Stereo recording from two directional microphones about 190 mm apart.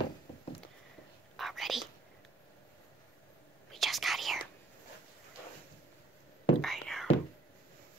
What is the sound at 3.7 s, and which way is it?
Whispering, centre (ahead or behind).